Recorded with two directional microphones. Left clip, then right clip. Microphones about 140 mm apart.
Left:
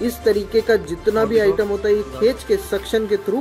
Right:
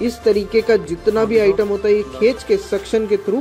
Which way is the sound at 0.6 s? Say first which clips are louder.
Right 2 dB; 20° right (ahead or behind).